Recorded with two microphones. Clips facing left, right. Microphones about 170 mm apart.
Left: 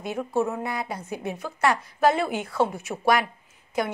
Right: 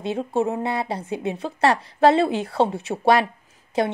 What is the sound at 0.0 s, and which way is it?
A woman's voice, 25° right (ahead or behind).